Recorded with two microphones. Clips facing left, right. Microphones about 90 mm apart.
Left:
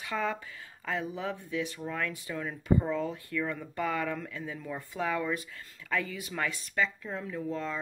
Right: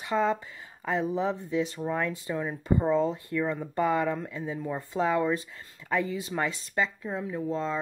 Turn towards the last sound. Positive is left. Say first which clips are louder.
# right 4 dB
turn(degrees=-25)  # may be behind; listen again after turning